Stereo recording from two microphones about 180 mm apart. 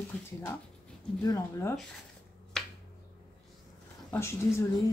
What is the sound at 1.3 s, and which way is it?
Speech, 15° left (ahead or behind).